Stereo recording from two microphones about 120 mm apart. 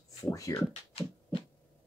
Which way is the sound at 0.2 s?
25° left (ahead or behind).